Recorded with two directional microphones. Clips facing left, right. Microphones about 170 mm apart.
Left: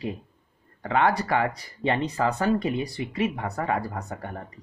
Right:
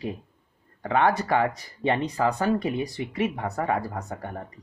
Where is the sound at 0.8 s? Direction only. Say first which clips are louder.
Right 1 dB; 20° right (ahead or behind).